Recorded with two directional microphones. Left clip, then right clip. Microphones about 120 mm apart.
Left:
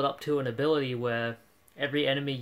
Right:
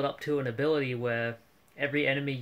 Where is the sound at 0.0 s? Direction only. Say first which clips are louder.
Left 2 dB; centre (ahead or behind).